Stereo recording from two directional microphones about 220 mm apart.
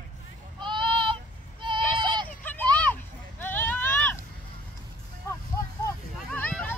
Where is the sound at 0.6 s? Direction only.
20° right (ahead or behind).